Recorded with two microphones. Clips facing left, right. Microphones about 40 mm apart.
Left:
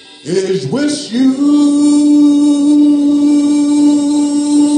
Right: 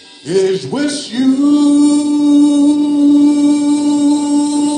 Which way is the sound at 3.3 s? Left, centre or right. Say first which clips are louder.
Left 1 dB; right.